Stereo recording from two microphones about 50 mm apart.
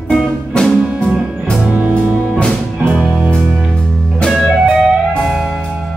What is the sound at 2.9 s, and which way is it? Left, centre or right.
Music, right.